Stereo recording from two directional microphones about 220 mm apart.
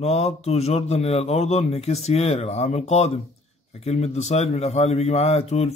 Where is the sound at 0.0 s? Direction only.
30° left (ahead or behind).